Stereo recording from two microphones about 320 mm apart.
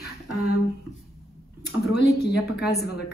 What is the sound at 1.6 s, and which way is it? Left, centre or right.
Speech, left.